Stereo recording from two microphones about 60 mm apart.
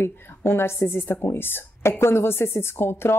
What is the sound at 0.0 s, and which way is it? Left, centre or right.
Speech, left.